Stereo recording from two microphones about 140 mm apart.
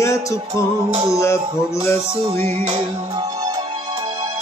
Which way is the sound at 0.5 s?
30° right (ahead or behind).